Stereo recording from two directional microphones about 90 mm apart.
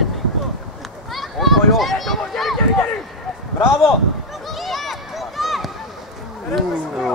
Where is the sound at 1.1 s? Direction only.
Centre (ahead or behind).